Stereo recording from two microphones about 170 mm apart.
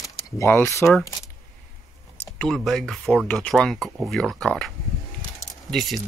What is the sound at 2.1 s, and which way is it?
Speech, 5° left (ahead or behind).